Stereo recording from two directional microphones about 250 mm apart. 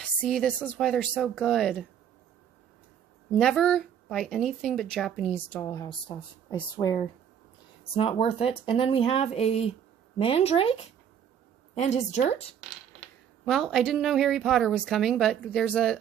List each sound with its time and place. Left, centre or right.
0.0 s speech: centre
3.3 s a woman's voice: centre; by 12.5 s left
13.5 s speech: centre